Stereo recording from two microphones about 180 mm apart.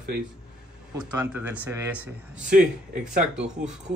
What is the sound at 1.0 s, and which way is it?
Speech, 10° right (ahead or behind).